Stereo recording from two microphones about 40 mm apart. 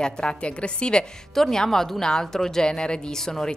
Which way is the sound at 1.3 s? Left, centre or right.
Centre.